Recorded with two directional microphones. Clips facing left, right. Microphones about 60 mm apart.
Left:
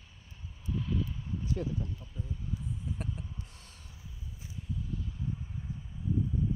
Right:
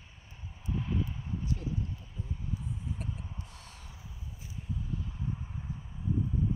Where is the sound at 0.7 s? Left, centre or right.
Right.